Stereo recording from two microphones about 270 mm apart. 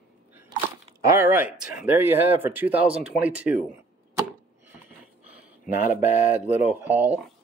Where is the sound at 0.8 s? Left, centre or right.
Centre.